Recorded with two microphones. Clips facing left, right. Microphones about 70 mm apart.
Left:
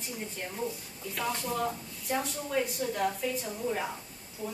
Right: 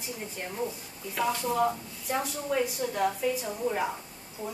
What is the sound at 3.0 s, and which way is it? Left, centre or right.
Speech, centre.